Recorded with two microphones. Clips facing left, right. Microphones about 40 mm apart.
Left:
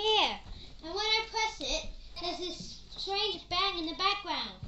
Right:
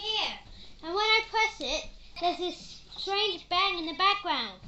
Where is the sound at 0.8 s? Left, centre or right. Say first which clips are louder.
Right 6 dB; right.